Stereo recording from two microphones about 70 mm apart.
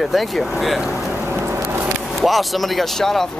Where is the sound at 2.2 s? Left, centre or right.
Centre.